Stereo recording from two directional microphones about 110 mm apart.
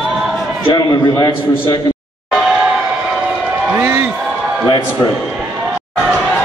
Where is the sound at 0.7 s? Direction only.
40° left (ahead or behind).